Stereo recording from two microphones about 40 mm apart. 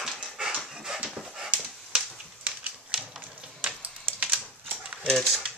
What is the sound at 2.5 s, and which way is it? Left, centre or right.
Typewriter, right.